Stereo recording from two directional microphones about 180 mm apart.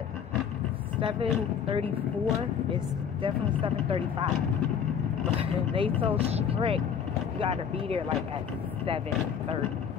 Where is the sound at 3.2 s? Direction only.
30° right (ahead or behind).